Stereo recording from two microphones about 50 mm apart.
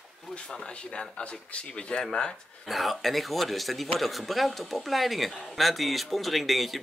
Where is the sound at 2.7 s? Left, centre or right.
Centre.